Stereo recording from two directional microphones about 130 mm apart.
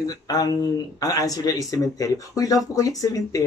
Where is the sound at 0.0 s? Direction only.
30° left (ahead or behind).